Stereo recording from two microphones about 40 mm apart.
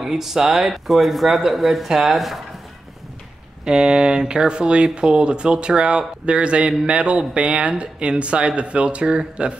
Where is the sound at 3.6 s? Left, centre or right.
Right.